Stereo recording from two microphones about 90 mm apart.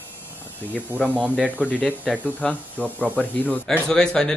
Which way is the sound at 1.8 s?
15° left (ahead or behind).